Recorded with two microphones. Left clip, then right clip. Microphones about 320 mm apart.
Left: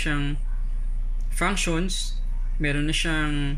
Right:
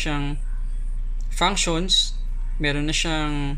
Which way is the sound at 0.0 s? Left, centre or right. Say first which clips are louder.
Right 1 dB; centre.